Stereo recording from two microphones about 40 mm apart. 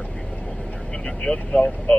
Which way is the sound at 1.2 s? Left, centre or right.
Left.